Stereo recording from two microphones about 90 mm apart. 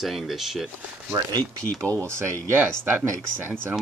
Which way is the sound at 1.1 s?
40° right (ahead or behind).